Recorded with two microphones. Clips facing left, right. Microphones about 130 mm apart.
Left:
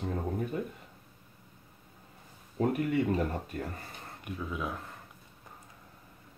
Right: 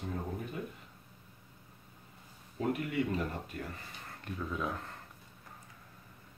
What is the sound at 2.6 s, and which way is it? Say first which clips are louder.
Speech: left 5 dB; 45° left (ahead or behind).